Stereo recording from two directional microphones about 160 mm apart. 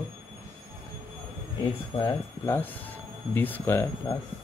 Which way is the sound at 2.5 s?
10° left (ahead or behind).